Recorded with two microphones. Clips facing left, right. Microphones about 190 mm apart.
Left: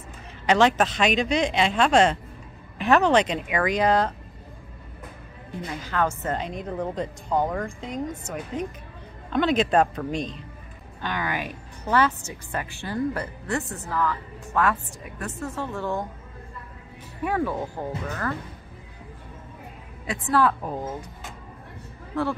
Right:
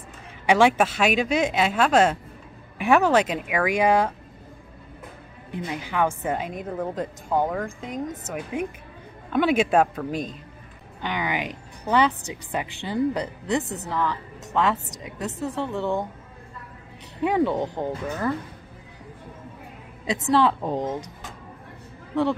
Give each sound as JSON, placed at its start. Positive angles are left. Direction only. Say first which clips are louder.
{"t": 0.5, "sound": "speech", "louder": "right 1 dB", "side_deg": -10}
{"t": 5.5, "sound": "a woman's voice", "louder": "right 2 dB", "side_deg": -15}
{"t": 17.2, "sound": "a woman's voice", "louder": "right 4 dB", "side_deg": -20}
{"t": 20.2, "sound": "a woman's voice", "louder": "right 2 dB", "side_deg": -25}